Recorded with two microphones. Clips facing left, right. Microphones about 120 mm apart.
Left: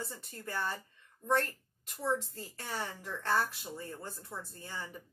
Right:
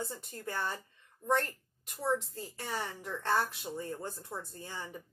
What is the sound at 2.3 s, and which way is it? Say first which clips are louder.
A woman's voice: right 2 dB; 25° right (ahead or behind).